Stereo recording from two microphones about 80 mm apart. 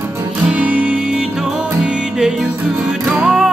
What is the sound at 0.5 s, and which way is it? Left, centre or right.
Music, centre.